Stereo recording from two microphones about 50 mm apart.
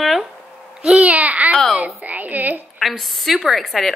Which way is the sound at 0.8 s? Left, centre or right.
Right.